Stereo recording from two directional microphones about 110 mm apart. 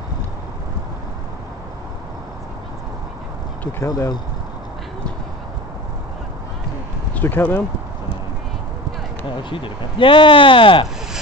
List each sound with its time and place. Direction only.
3.8 s speech: 30° left (ahead or behind)
7.2 s speech: 15° left (ahead or behind)
9.4 s speech: 50° left (ahead or behind)